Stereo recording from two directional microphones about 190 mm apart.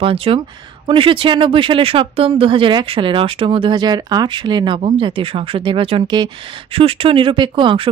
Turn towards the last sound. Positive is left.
turn(degrees=-25)  # may be behind; listen again after turning